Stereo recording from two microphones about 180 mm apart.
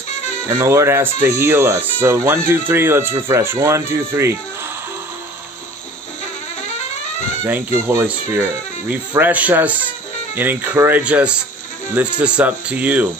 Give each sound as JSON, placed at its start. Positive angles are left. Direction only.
{"t": 0.5, "sound": "speech", "side_deg": -15}
{"t": 7.4, "sound": "speech", "side_deg": -10}